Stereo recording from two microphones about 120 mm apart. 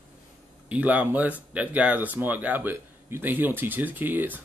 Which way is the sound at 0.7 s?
10° right (ahead or behind).